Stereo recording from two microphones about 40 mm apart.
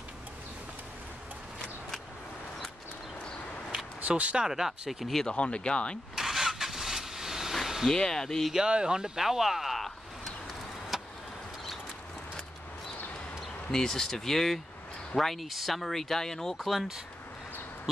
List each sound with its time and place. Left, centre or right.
4.2 s speech: right
4.5 s speech: centre
5.3 s speech: left
6.1 s vehicle: centre
7.9 s speech: centre
8.5 s speech: right
9.2 s speech: centre
9.8 s a sound: centre
10.9 s vehicle: centre
13.7 s speech: centre